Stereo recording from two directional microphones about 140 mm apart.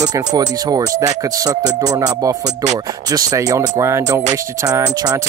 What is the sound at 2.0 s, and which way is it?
Speech, 25° right (ahead or behind).